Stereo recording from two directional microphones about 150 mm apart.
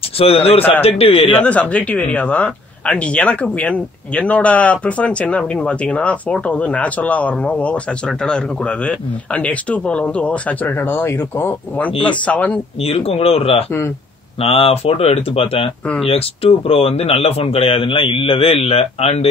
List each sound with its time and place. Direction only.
0.2 s speech: 40° left (ahead or behind)
1.3 s speech: 10° left (ahead or behind)
12.8 s speech: 40° left (ahead or behind)